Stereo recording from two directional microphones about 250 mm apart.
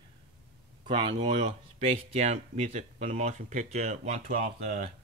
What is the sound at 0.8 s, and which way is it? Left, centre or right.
Speech, centre.